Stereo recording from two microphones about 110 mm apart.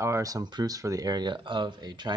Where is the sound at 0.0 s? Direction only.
30° right (ahead or behind).